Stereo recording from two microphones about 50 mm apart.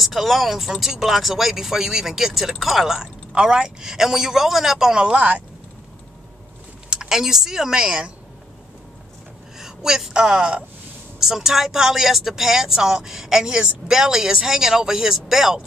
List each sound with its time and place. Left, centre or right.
0.0 s speech: centre
5.0 s speech: right
6.9 s speech: centre
9.6 s a woman's voice: centre
11.1 s speech: centre